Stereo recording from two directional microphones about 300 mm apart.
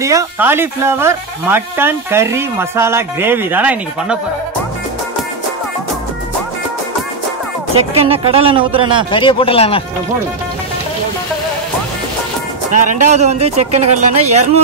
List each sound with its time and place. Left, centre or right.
0.0 s speech: centre
7.7 s speech: centre
9.1 s speech: centre
12.7 s speech: right